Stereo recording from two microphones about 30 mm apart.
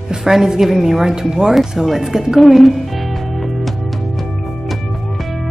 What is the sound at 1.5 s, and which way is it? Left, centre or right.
Speech, centre.